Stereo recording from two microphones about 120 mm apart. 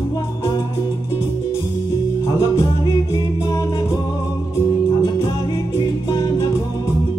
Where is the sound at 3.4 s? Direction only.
30° left (ahead or behind).